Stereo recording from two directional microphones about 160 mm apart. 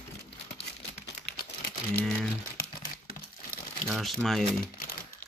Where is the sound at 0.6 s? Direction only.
90° left.